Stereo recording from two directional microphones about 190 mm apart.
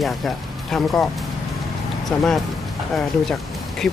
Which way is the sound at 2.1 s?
Centre (ahead or behind).